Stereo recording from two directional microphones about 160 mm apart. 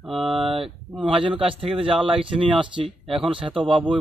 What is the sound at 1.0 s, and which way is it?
Speech, 35° right (ahead or behind).